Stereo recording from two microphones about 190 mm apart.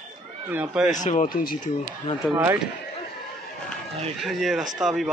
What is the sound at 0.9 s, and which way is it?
Speech, 40° left (ahead or behind).